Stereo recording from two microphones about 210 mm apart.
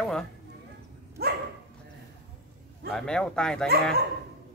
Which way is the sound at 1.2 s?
50° right (ahead or behind).